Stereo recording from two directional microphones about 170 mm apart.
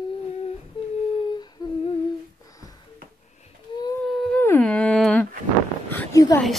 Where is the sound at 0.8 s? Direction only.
30° left (ahead or behind).